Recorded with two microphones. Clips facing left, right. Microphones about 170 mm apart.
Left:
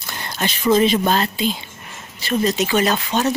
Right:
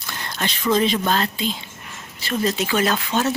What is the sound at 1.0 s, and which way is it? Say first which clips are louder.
Speech: left 3 dB; 20° left (ahead or behind).